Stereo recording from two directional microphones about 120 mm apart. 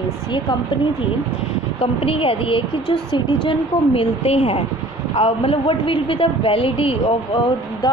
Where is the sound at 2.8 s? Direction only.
40° left (ahead or behind).